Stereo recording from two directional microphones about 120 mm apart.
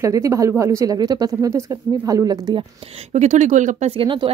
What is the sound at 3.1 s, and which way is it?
Speech, 80° right.